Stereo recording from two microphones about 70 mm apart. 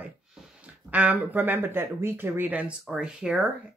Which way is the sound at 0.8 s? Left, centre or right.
Right.